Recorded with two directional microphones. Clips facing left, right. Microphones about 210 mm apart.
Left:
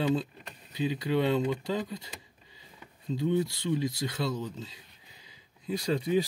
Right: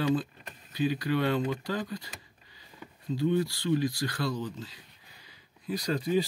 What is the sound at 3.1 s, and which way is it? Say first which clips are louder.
Speech: right 1 dB; 20° left (ahead or behind).